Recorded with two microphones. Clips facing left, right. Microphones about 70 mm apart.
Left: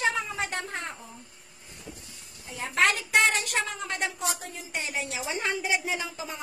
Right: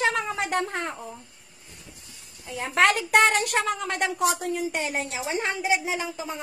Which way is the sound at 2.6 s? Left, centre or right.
Right.